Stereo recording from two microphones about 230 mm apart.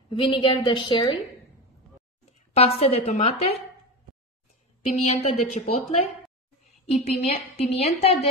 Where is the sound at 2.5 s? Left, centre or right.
Left.